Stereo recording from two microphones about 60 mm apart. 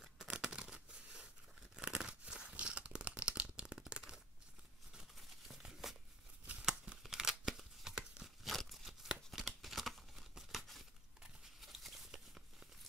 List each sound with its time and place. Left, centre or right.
0.0 s tearing: centre
1.8 s crunch: centre
3.7 s tearing: centre
5.1 s a sound: centre
6.6 s tearing: centre
8.5 s a sound: centre